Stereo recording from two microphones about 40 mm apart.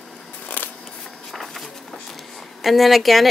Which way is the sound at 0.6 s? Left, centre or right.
Left.